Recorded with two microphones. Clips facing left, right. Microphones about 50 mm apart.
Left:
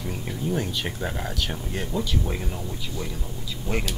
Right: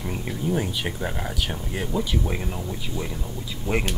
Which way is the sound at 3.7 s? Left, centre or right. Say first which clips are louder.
Right 3 dB; right.